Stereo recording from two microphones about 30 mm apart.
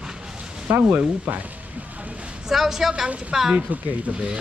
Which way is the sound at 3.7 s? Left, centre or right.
Right.